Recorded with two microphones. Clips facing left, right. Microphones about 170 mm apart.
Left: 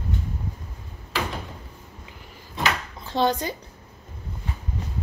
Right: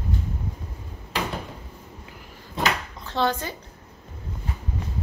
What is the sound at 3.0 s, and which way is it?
Speech, 15° left (ahead or behind).